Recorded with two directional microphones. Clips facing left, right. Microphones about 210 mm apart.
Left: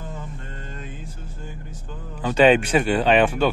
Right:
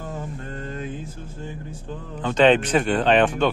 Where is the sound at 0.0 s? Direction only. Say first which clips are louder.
Right 4 dB; 45° right (ahead or behind).